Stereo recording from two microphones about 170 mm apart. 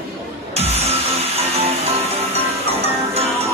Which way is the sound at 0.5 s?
40° right (ahead or behind).